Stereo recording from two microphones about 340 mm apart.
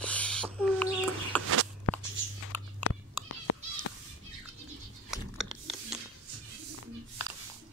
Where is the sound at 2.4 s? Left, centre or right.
Left.